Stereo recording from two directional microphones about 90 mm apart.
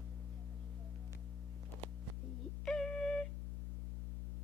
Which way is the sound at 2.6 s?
5° left (ahead or behind).